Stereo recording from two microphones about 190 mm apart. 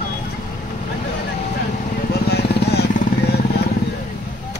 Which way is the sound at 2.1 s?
60° left (ahead or behind).